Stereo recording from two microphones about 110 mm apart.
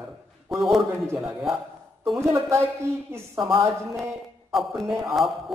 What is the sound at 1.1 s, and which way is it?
Speech, 5° right (ahead or behind).